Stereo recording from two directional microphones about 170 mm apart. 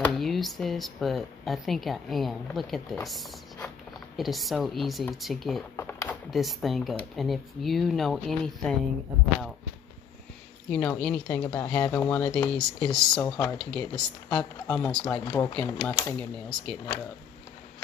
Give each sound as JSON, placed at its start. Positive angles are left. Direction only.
{"t": 0.1, "sound": "speech", "side_deg": 0}
{"t": 5.8, "sound": "a sound", "side_deg": 15}
{"t": 6.3, "sound": "speech", "side_deg": 0}
{"t": 10.7, "sound": "speech", "side_deg": 5}